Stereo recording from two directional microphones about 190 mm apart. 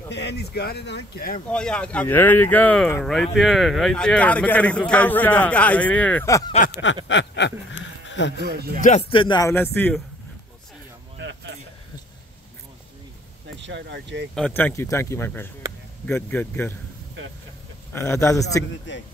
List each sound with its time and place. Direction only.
0.1 s speech: 65° left (ahead or behind)
1.5 s speech: 5° left (ahead or behind)
7.1 s a sound: 70° left (ahead or behind)
8.4 s speech: 60° right (ahead or behind)
9.1 s speech: 25° left (ahead or behind)
9.5 s speech: 10° left (ahead or behind)
11.1 s a sound: 70° right (ahead or behind)
13.6 s speech: 70° right (ahead or behind)
14.3 s speech: 5° left (ahead or behind)
17.9 s speech: 15° left (ahead or behind)